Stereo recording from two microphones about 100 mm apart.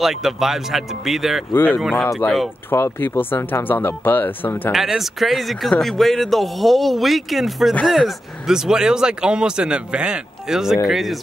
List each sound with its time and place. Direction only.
0.0 s speech: 5° right (ahead or behind)
1.5 s speech: 20° left (ahead or behind)
4.7 s speech: 5° right (ahead or behind)